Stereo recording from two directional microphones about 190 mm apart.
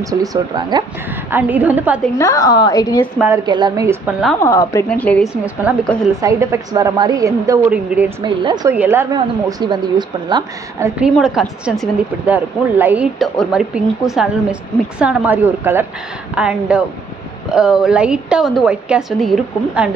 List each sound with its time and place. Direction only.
0.0 s a woman's voice: 20° right (ahead or behind)
1.1 s speech: 10° right (ahead or behind)
2.1 s a woman's voice: 15° left (ahead or behind)
3.4 s speech: 25° right (ahead or behind)
4.4 s a woman's voice: 15° left (ahead or behind)
5.3 s speech: 5° right (ahead or behind)
8.2 s a woman's voice: 25° right (ahead or behind)
8.7 s a woman's voice: 10° right (ahead or behind)
11.0 s a woman's voice: centre (ahead or behind)